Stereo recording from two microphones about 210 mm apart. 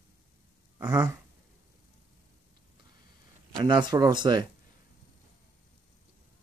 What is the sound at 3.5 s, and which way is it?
Speech, 20° right (ahead or behind).